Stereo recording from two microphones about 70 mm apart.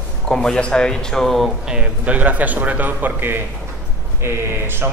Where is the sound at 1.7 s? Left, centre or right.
Centre; by 4.8 s right.